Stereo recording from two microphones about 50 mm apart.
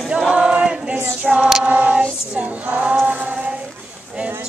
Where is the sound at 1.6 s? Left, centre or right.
Right.